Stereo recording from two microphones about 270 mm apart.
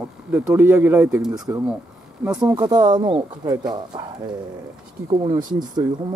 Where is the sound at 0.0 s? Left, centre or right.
Centre.